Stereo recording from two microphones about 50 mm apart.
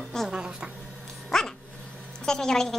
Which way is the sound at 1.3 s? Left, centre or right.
Centre.